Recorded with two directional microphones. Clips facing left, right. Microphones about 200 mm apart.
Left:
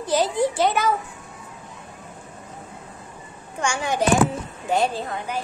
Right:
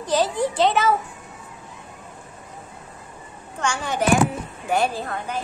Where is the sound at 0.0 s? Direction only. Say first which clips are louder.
Left 1 dB; 15° left (ahead or behind).